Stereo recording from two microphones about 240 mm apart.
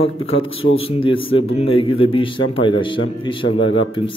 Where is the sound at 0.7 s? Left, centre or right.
Left.